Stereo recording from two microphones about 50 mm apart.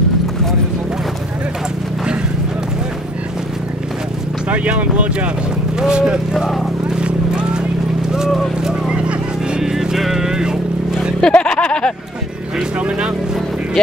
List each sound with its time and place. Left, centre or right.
4.6 s speech: right
5.8 s speech: centre
7.0 s vehicle: centre
8.6 s vehicle: centre
11.1 s a sound: centre